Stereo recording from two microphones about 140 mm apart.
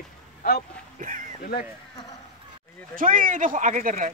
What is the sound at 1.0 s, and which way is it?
Speech, 70° right (ahead or behind).